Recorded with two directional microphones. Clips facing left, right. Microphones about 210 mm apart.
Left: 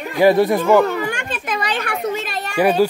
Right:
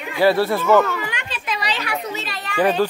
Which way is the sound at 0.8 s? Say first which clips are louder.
Left 5 dB; 40° left (ahead or behind).